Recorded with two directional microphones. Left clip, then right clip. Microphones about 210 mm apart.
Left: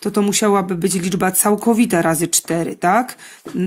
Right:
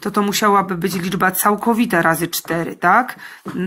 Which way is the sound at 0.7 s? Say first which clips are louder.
Left 2 dB; 30° left (ahead or behind).